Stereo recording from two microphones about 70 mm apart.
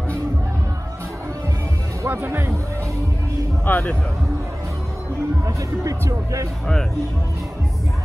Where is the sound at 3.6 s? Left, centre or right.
Left.